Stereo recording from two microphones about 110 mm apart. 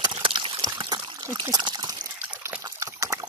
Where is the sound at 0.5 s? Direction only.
40° right (ahead or behind).